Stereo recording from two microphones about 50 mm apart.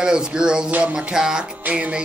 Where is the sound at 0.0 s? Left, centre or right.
Centre.